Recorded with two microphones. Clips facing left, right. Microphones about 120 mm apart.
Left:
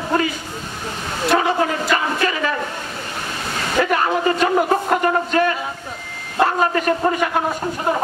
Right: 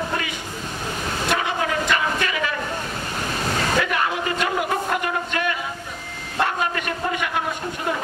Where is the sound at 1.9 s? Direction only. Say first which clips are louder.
Left 3 dB; 35° left (ahead or behind).